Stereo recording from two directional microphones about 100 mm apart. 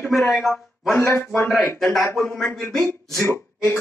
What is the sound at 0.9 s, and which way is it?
Speech, 25° left (ahead or behind).